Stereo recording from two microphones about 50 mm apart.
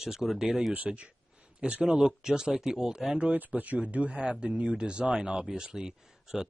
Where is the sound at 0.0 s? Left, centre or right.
Centre.